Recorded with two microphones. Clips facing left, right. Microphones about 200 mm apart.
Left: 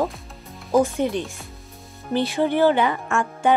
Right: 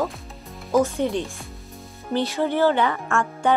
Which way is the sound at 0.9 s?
15° left (ahead or behind).